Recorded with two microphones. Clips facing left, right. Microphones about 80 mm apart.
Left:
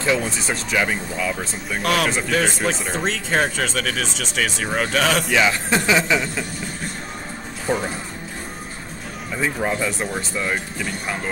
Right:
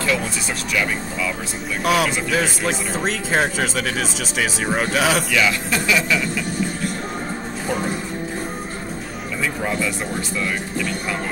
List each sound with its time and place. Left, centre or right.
0.5 s speech: left
1.8 s speech: centre
5.3 s speech: left
9.4 s speech: left